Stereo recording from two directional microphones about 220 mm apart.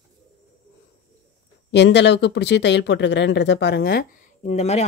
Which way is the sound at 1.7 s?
50° left (ahead or behind).